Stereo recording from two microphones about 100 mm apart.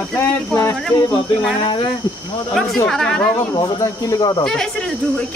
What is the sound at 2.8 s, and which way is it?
Speech, 5° left (ahead or behind).